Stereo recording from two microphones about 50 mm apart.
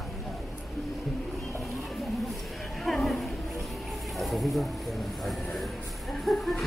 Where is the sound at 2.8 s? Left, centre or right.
Centre.